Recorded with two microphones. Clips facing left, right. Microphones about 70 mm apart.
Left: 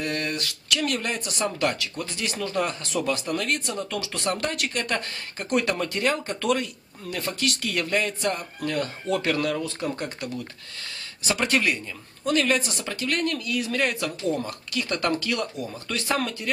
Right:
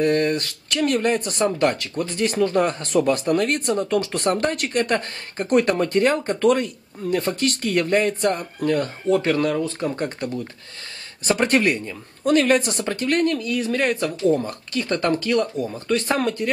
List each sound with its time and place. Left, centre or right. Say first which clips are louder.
0.0 s speech: right 9 dB; right
9.9 s speech: right 6 dB; right